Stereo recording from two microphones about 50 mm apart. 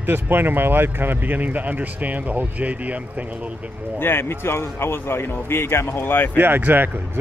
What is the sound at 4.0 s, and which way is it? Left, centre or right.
Speech, left.